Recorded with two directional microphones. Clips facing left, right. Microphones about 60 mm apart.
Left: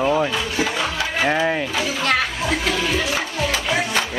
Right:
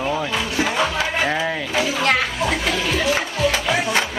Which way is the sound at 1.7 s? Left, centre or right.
Centre.